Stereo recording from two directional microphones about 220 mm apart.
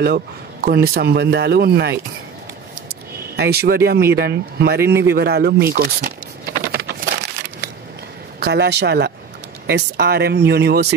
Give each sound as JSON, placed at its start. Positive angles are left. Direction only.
{"t": 0.7, "sound": "speech", "side_deg": -45}
{"t": 5.1, "sound": "a sound", "side_deg": -45}
{"t": 8.4, "sound": "speech", "side_deg": -50}